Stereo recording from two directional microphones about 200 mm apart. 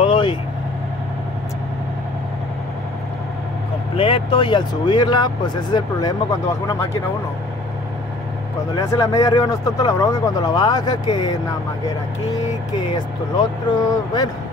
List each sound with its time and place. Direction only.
0.0 s vehicle: 25° left (ahead or behind)
3.9 s speech: 25° left (ahead or behind)
8.7 s speech: 15° left (ahead or behind)
13.8 s speech: 20° left (ahead or behind)